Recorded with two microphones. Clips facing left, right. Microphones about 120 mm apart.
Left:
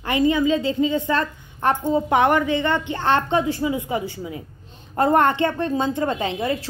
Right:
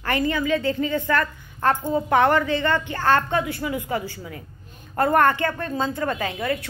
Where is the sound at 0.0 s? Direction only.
20° left (ahead or behind).